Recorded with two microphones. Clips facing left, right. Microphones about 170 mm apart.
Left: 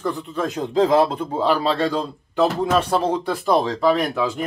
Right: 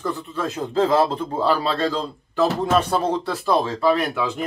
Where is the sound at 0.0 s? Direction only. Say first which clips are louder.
Left 2 dB; 15° left (ahead or behind).